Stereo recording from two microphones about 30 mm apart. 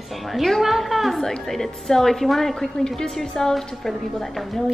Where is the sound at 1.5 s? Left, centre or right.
Centre.